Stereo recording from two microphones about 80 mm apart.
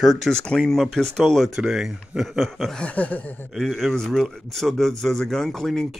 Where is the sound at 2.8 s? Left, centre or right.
Centre.